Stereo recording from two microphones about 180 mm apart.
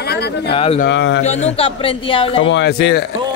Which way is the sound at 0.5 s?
30° left (ahead or behind).